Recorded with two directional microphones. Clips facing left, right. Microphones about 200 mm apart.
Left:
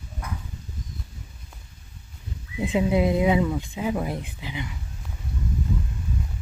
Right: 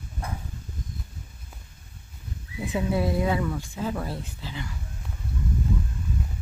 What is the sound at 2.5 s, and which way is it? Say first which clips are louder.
Speech: left 4 dB; 20° left (ahead or behind).